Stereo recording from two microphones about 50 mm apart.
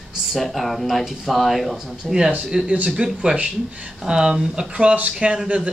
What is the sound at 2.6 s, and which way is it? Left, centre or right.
Speech, right.